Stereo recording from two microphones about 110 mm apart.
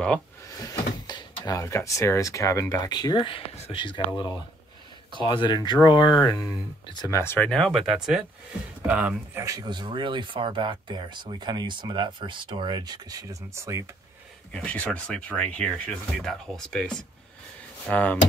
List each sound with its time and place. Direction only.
0.6 s speech: 35° left (ahead or behind)
6.2 s speech: 30° left (ahead or behind)
7.3 s speech: 10° left (ahead or behind); by 9.4 s 15° right (ahead or behind)
9.4 s speech: 30° right (ahead or behind)
9.7 s speech: 45° right (ahead or behind); by 13.8 s 25° right (ahead or behind)
14.5 s speech: 10° left (ahead or behind)